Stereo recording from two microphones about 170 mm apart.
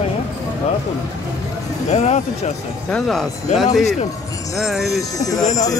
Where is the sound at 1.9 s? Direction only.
40° left (ahead or behind).